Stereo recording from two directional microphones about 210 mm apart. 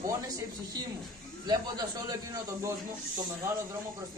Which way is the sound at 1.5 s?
20° right (ahead or behind).